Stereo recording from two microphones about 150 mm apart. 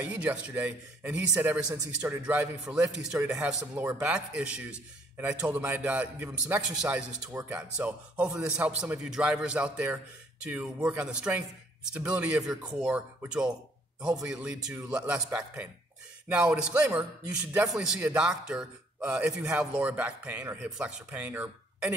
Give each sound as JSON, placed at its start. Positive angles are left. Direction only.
{"t": 0.0, "sound": "a man's voice", "side_deg": -10}
{"t": 17.5, "sound": "a man's voice", "side_deg": -20}
{"t": 17.7, "sound": "a man's voice", "side_deg": -5}